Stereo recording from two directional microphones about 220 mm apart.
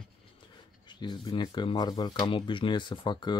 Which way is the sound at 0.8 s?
20° left (ahead or behind).